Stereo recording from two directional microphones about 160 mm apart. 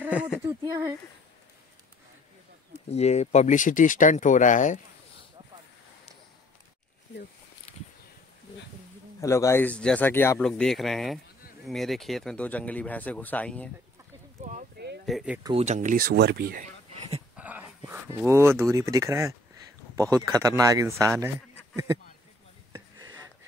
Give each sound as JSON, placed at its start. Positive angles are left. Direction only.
{"t": 0.0, "sound": "a sound", "side_deg": -5}
{"t": 0.7, "sound": "speech", "side_deg": -15}
{"t": 2.9, "sound": "speech", "side_deg": 45}
{"t": 9.2, "sound": "speech", "side_deg": 20}
{"t": 10.4, "sound": "speech", "side_deg": 0}
{"t": 14.4, "sound": "speech", "side_deg": -50}
{"t": 15.0, "sound": "speech", "side_deg": -5}
{"t": 15.5, "sound": "speech", "side_deg": -45}
{"t": 16.6, "sound": "a sound", "side_deg": -40}
{"t": 17.4, "sound": "speech", "side_deg": -10}